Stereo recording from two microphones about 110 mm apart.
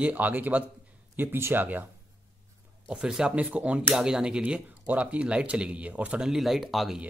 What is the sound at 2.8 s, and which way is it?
Speech, 5° right (ahead or behind).